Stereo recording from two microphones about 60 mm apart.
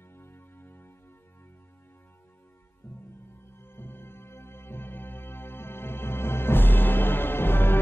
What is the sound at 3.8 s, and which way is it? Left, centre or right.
Music, left.